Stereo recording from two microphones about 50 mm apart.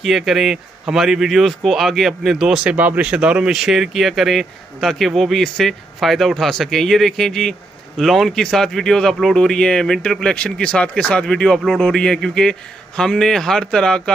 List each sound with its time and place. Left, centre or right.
0.0 s speech: centre
2.6 s speech: right
3.5 s speech: centre